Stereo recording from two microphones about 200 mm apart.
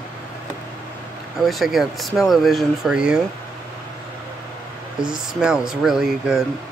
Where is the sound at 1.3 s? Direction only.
Centre (ahead or behind).